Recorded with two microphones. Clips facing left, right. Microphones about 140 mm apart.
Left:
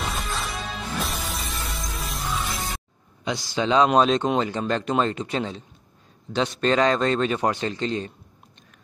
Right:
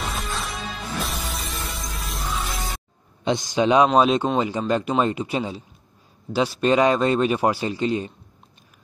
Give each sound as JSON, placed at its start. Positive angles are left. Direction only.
{"t": 0.0, "sound": "music", "side_deg": 0}
{"t": 3.3, "sound": "speech", "side_deg": -20}